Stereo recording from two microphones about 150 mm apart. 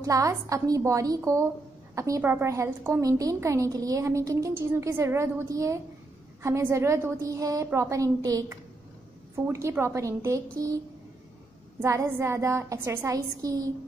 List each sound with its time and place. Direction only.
0.0 s a woman's voice: 20° right (ahead or behind)
11.8 s a woman's voice: 20° right (ahead or behind)